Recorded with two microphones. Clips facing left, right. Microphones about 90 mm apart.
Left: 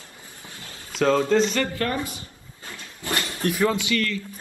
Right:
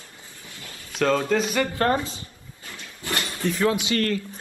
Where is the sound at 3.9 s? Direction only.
35° right (ahead or behind).